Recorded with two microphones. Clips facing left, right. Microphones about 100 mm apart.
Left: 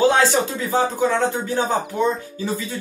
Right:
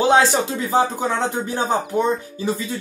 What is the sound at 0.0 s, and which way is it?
Speech, 20° right (ahead or behind).